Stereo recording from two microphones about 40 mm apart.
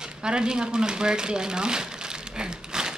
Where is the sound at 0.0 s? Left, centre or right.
Centre.